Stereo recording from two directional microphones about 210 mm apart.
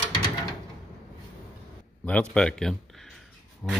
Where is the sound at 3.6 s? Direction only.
5° left (ahead or behind).